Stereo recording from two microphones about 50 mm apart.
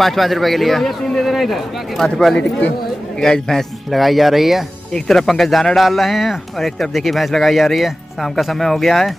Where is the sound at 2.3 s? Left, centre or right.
Left.